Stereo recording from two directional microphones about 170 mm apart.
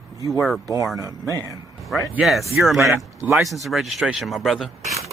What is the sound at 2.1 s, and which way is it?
Speech, centre (ahead or behind).